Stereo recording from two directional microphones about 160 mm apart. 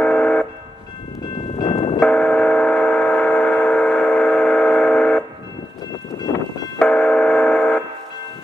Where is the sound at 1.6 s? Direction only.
30° left (ahead or behind).